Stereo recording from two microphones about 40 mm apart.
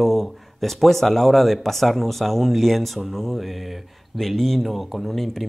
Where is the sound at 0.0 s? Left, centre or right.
Centre.